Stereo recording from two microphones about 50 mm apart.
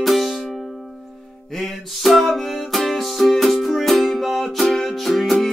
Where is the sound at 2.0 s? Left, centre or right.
Centre.